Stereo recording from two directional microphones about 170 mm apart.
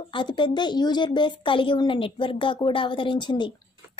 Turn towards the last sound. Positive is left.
turn(degrees=30)  # may be behind; listen again after turning